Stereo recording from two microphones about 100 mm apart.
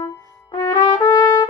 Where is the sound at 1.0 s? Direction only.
50° left (ahead or behind).